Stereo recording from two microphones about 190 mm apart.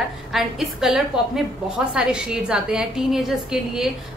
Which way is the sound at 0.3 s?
Centre (ahead or behind).